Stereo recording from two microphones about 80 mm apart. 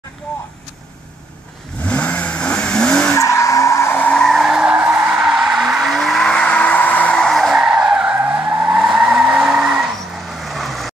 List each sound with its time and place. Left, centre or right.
1.8 s vehicle: centre
3.2 s skidding: left
4.3 s skidding: centre
4.7 s skidding: centre
5.1 s vehicle: centre
7.2 s skidding: centre
8.2 s vehicle: centre